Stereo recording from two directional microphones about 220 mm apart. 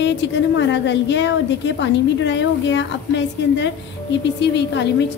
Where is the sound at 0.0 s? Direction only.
55° left (ahead or behind).